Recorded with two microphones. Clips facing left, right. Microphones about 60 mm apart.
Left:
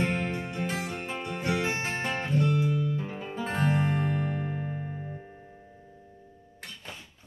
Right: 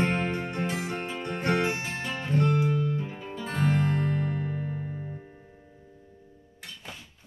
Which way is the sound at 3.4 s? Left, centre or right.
Left.